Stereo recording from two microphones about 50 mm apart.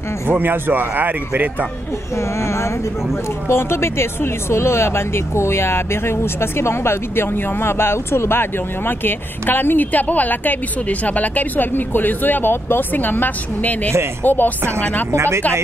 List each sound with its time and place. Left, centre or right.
0.3 s speech: right
2.1 s speech: left
15.1 s speech: right